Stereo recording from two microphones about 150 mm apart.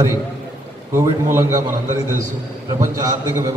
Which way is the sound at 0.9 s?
20° right (ahead or behind).